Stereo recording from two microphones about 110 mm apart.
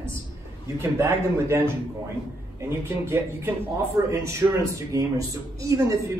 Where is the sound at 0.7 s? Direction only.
25° right (ahead or behind).